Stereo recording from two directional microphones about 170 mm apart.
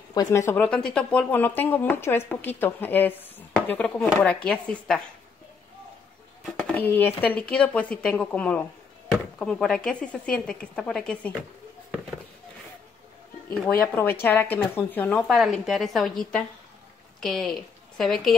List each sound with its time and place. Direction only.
0.1 s speech: 20° left (ahead or behind); by 5.0 s 5° left (ahead or behind)
6.4 s speech: 10° left (ahead or behind)
13.9 s a woman's voice: 10° left (ahead or behind)